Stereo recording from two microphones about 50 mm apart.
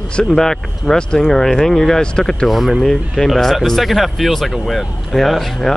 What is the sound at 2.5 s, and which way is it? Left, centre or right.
Speech, centre.